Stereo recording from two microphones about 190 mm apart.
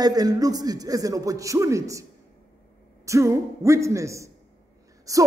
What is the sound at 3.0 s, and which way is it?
A man's voice, 15° right (ahead or behind).